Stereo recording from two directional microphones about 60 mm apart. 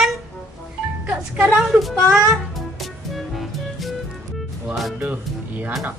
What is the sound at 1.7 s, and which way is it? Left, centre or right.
Speech, centre.